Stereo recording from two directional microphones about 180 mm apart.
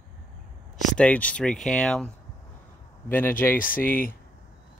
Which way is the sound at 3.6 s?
50° left (ahead or behind).